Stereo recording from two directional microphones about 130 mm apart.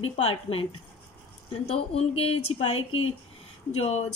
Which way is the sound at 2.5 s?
50° left (ahead or behind).